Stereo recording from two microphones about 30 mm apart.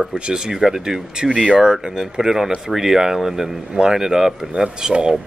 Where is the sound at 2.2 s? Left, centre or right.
Centre.